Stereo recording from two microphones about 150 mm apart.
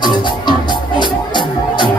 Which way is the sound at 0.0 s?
30° left (ahead or behind).